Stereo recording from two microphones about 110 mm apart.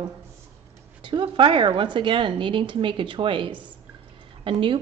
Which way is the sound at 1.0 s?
50° right (ahead or behind).